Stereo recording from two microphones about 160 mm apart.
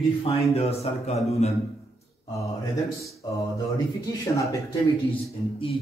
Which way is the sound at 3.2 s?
25° left (ahead or behind).